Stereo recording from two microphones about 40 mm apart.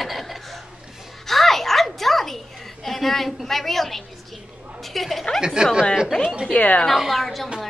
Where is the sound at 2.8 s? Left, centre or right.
Centre.